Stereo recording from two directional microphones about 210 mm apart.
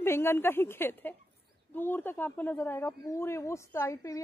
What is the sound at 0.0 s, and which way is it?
Speech, 10° left (ahead or behind).